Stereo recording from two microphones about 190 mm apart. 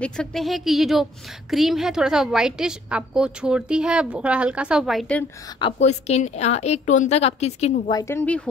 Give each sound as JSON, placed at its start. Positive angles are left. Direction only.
{"t": 0.0, "sound": "a woman's voice", "side_deg": 5}
{"t": 5.6, "sound": "a woman's voice", "side_deg": 35}
{"t": 7.9, "sound": "speech", "side_deg": 15}